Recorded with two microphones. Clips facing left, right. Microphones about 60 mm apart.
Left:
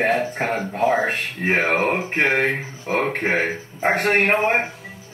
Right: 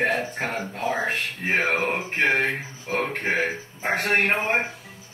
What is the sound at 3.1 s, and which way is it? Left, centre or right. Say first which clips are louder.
A man's voice: left 3 dB; left.